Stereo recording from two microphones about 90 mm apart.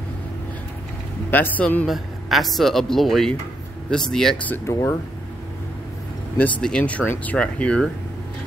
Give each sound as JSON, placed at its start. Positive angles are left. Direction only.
{"t": 1.3, "sound": "a man's voice", "side_deg": 20}
{"t": 1.9, "sound": "speech", "side_deg": 0}
{"t": 4.6, "sound": "speech", "side_deg": 30}
{"t": 6.6, "sound": "speech", "side_deg": 10}